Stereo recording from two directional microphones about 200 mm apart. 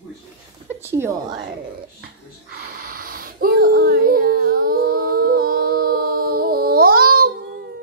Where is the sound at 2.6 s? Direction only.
45° right (ahead or behind).